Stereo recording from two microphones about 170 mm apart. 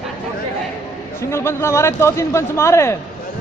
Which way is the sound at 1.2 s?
15° left (ahead or behind).